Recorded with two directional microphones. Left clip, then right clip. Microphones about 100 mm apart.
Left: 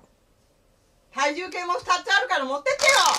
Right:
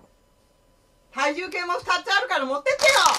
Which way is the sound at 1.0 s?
30° left (ahead or behind).